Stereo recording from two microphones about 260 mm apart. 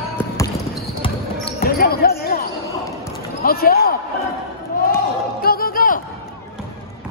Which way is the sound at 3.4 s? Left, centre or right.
Left.